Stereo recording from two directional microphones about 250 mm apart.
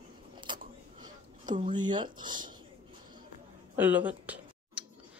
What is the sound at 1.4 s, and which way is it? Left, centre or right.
Speech, centre.